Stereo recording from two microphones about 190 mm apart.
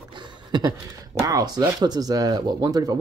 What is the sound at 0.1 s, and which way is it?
Speech, 25° right (ahead or behind).